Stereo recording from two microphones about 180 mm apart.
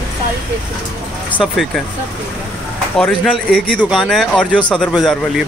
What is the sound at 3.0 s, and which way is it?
Speech, centre (ahead or behind).